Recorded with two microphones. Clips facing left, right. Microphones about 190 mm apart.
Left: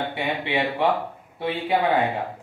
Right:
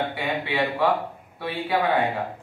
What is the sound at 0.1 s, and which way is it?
Speech, 20° left (ahead or behind).